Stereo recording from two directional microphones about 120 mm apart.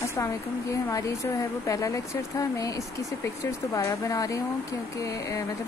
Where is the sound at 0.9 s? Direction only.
25° left (ahead or behind).